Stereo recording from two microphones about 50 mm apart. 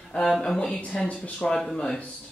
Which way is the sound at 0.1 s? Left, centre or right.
Centre.